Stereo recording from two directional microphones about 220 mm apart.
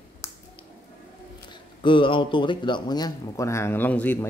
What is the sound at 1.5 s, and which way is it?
A man's voice, 20° left (ahead or behind).